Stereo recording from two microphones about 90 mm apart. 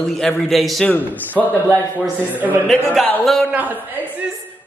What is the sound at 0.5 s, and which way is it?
Speech, centre (ahead or behind).